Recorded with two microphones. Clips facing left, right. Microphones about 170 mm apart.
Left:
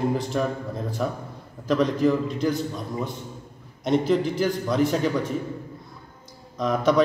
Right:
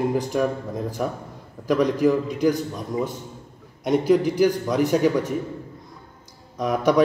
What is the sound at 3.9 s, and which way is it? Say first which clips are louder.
A man's voice: right 3 dB; 15° right (ahead or behind).